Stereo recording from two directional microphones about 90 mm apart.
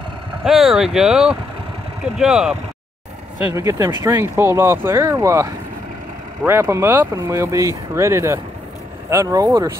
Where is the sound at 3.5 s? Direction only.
35° right (ahead or behind).